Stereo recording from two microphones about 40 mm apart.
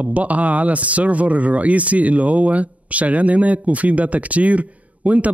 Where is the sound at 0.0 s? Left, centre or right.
Right.